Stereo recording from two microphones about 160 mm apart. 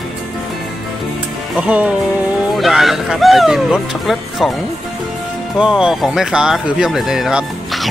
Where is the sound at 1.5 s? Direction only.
10° right (ahead or behind).